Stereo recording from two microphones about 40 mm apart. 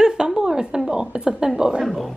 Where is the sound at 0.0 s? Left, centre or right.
Centre.